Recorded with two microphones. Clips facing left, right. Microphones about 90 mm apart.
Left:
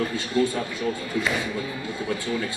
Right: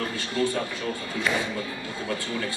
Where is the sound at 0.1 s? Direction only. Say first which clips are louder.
Left 3 dB; 20° left (ahead or behind).